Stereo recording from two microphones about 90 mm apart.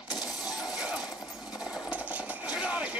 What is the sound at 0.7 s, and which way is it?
Coin, 5° right (ahead or behind).